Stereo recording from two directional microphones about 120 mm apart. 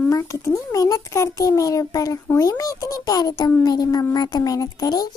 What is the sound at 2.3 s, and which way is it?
A child's voice, 30° left (ahead or behind).